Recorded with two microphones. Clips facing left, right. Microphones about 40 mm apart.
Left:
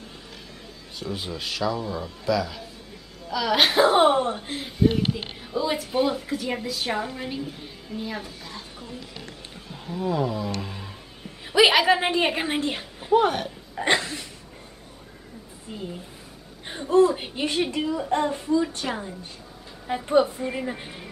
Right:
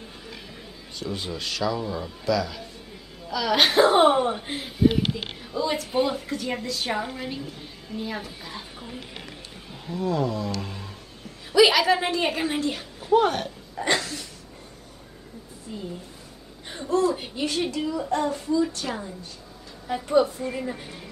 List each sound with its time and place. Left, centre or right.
0.9 s speech: centre
5.4 s speech: centre
8.3 s a sound: centre
9.8 s roaring cats: centre
10.6 s speech: centre
11.5 s a woman's voice: left
13.1 s speech: centre
13.7 s a woman's voice: left
15.7 s a woman's voice: left
16.9 s a woman's voice: left